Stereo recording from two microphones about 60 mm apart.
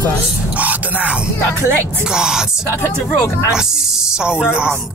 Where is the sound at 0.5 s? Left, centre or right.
Right.